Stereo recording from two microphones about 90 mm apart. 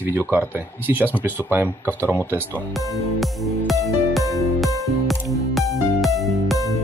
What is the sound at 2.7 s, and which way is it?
Music, centre (ahead or behind).